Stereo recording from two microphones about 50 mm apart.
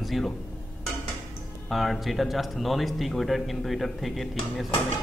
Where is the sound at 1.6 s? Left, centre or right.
Centre.